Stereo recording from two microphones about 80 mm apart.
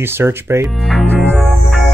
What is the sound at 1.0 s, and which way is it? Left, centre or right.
Music, right.